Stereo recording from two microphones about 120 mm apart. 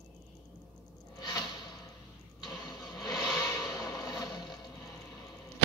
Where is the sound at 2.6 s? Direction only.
30° left (ahead or behind).